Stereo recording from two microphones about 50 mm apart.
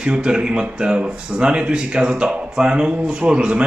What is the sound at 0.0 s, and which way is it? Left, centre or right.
Speech, centre.